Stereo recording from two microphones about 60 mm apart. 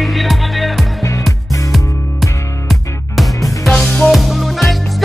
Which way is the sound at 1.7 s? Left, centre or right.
Centre.